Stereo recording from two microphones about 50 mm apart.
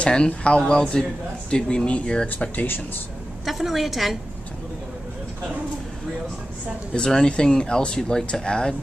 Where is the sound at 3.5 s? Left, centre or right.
Centre.